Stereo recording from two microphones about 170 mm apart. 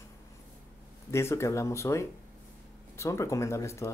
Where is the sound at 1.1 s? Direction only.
15° left (ahead or behind).